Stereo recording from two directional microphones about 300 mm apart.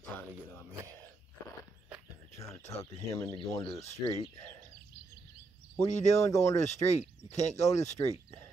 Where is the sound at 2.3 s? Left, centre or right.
Centre.